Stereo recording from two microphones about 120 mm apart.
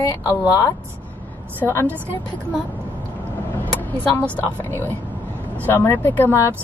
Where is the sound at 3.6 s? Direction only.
15° left (ahead or behind).